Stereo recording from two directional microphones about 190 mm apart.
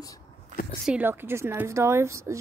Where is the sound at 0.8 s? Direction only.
10° right (ahead or behind).